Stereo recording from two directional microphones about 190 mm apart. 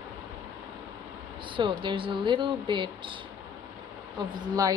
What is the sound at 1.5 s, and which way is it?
Speech, 25° right (ahead or behind).